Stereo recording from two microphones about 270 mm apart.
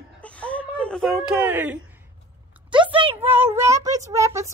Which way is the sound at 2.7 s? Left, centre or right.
Centre.